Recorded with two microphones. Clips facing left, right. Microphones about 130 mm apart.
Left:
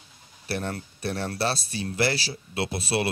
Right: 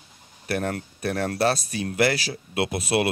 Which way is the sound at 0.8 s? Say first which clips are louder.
Right 4 dB; 30° left (ahead or behind).